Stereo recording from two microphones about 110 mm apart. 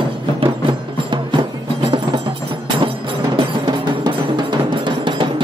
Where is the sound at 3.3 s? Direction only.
45° right (ahead or behind).